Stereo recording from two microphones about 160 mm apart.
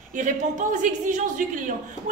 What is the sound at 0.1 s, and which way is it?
Speech, 55° right (ahead or behind).